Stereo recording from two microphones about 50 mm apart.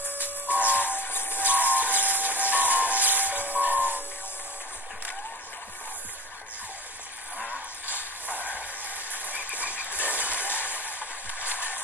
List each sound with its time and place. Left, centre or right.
0.2 s music: left
1.6 s music: right
3.6 s a sound: right
8.3 s a sound: right
9.8 s vehicle: right
10.4 s train: left
10.9 s vehicle: right